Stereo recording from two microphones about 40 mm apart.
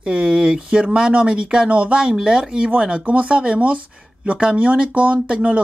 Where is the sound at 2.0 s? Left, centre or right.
Centre.